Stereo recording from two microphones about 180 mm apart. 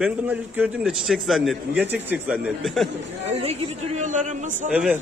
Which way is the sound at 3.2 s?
35° right (ahead or behind).